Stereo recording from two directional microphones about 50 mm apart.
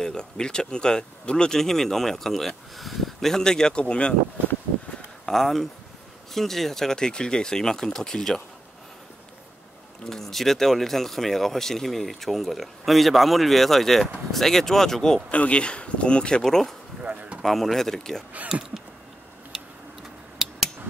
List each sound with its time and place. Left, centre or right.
0.0 s speech: centre
5.2 s speech: centre
10.0 s speech: centre
15.3 s speech: left; by 16.7 s centre
17.0 s a sound: right
17.4 s speech: centre
18.5 s a sound: centre